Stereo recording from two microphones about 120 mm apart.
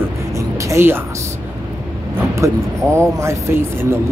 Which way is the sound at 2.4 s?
25° right (ahead or behind).